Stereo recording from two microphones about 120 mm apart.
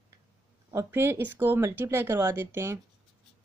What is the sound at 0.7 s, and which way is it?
Speech, 20° right (ahead or behind).